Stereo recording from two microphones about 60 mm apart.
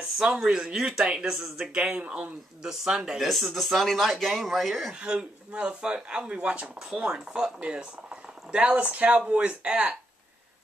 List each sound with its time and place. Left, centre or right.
0.2 s speech: centre
1.8 s speech: centre
2.6 s speech: centre
5.0 s speech: centre